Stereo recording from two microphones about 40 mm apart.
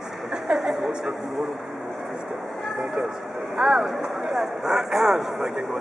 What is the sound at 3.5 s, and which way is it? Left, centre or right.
Speech, centre.